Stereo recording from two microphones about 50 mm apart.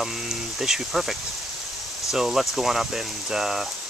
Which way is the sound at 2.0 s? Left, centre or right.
Centre.